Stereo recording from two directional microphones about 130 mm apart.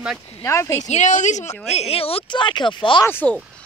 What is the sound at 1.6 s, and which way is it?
Speech, 55° left (ahead or behind).